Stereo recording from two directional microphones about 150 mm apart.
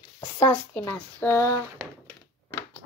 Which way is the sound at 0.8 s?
15° left (ahead or behind).